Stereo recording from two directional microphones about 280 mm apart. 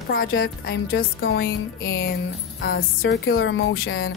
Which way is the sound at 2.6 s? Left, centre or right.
Left.